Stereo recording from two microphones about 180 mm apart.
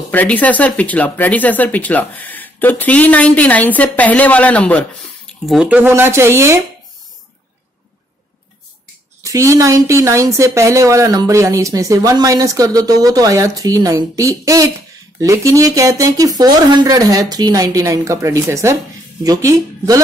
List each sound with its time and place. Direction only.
0.1 s speech: 10° left (ahead or behind); by 6.6 s 15° right (ahead or behind)
9.2 s a woman's voice: 15° right (ahead or behind)